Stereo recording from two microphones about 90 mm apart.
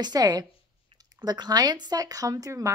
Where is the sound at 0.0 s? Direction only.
45° right (ahead or behind).